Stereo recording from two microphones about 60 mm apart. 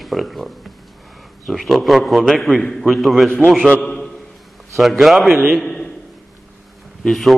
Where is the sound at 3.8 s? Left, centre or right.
Centre.